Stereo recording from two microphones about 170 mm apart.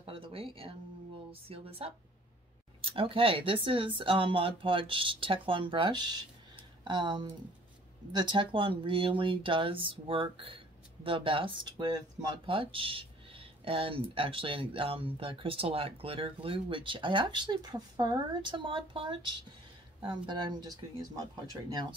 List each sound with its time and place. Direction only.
0.0 s guitar: 30° right (ahead or behind)
1.3 s speech: 35° right (ahead or behind)